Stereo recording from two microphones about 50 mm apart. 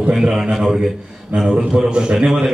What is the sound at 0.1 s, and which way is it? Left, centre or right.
Speech, centre.